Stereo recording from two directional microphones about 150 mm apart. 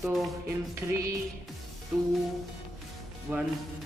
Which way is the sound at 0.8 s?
20° right (ahead or behind).